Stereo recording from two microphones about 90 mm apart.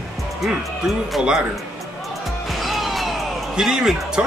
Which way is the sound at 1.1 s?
10° right (ahead or behind).